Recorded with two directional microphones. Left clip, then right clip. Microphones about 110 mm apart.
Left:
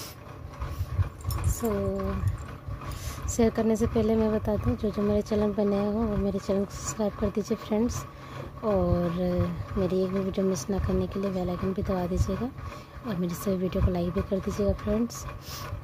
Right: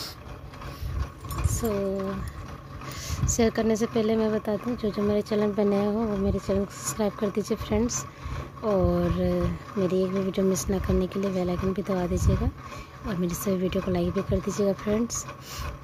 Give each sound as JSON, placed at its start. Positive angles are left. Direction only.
{"t": 3.3, "sound": "speech", "side_deg": -5}
{"t": 5.6, "sound": "speech", "side_deg": -15}
{"t": 6.2, "sound": "speech", "side_deg": -5}
{"t": 6.9, "sound": "speech", "side_deg": -15}
{"t": 14.6, "sound": "speech", "side_deg": -15}